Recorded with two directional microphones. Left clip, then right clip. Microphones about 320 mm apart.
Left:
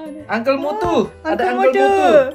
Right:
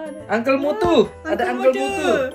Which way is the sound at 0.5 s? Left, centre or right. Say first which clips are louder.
Right 1 dB; centre.